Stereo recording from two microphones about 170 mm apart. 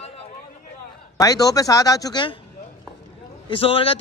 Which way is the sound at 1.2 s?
20° left (ahead or behind).